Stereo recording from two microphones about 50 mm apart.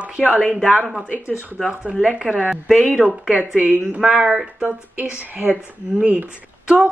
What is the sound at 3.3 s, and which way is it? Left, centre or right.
Speech, right.